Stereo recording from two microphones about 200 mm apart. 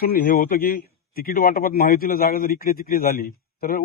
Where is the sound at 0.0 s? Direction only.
45° left (ahead or behind).